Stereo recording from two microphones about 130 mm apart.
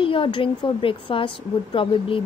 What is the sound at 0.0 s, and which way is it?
A woman's voice, 40° left (ahead or behind).